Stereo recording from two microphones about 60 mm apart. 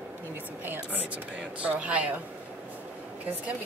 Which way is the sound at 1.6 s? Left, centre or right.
Right.